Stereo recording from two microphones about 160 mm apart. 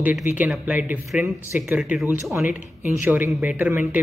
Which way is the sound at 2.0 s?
15° right (ahead or behind).